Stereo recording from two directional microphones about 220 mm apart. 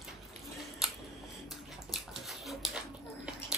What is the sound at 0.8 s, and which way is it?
Scissors, centre (ahead or behind).